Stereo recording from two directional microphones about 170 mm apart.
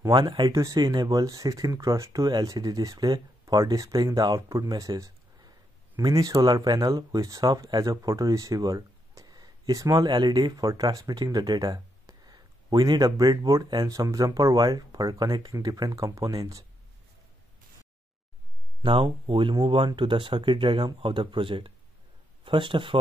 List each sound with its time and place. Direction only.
0.1 s speech: 30° right (ahead or behind)
18.8 s speech: 30° right (ahead or behind)